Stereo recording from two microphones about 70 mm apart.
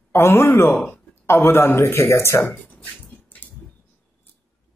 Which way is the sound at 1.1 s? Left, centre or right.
Left.